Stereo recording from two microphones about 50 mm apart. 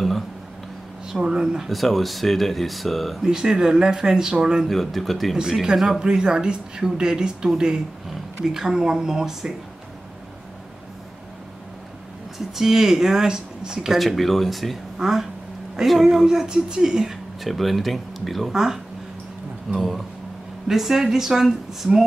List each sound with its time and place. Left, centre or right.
1.0 s speech: centre
1.7 s speech: centre
3.3 s speech: centre
4.6 s speech: centre
5.4 s speech: centre
12.5 s speech: centre
13.9 s speech: centre
18.5 s speech: centre
19.7 s speech: centre